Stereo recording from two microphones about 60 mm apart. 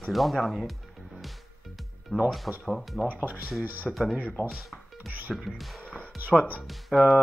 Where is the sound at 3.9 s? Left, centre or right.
Centre.